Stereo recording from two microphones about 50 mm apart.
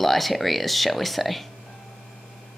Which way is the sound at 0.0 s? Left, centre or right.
Centre.